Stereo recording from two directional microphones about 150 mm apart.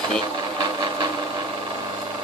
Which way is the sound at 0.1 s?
30° right (ahead or behind).